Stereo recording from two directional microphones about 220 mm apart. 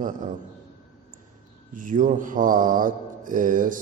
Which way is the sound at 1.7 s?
35° right (ahead or behind).